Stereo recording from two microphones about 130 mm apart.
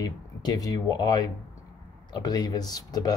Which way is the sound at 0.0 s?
30° left (ahead or behind).